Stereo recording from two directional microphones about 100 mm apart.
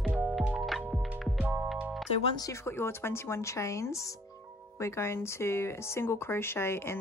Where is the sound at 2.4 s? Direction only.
30° left (ahead or behind).